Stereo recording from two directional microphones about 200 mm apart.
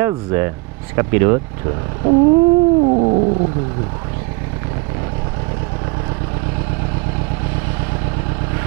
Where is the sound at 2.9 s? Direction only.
35° right (ahead or behind).